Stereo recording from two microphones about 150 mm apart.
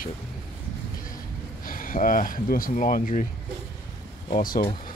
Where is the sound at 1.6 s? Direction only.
65° left (ahead or behind).